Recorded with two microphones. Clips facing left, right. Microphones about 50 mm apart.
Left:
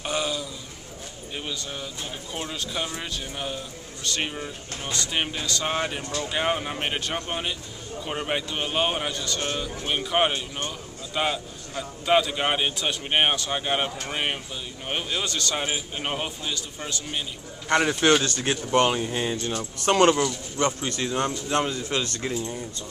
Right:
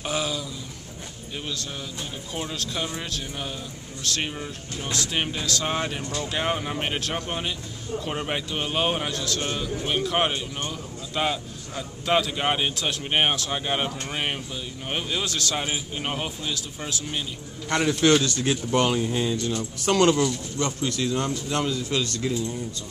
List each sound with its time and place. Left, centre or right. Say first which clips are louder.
0.0 s a sound: even; centre
1.3 s a man's voice: even; centre
17.6 s speech: even; centre
18.2 s speech: right 2 dB; left
18.5 s speech: left 2 dB; centre
19.2 s speech: right 1 dB; left